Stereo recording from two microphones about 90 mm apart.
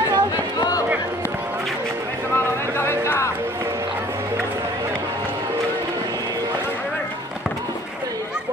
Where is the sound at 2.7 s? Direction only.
25° left (ahead or behind).